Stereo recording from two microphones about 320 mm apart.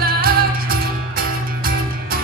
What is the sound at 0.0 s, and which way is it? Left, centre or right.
Music, right.